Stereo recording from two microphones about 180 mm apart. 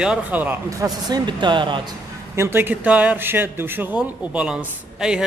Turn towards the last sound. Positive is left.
turn(degrees=-5)  # may be behind; listen again after turning